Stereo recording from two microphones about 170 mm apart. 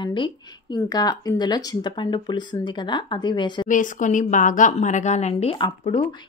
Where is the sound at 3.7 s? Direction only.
50° left (ahead or behind).